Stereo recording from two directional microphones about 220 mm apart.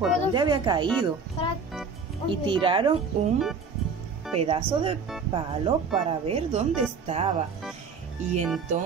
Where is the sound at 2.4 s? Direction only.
25° right (ahead or behind).